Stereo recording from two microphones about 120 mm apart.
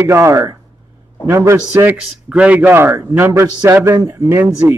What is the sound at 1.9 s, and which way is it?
A man's voice, 10° right (ahead or behind).